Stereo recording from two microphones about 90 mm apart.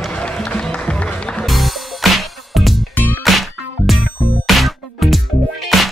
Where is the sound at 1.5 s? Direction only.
Centre (ahead or behind).